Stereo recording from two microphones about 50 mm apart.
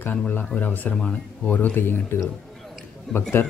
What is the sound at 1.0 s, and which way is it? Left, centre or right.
Speech, left.